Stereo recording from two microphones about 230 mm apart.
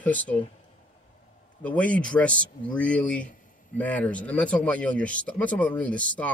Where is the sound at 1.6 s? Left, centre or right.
Centre.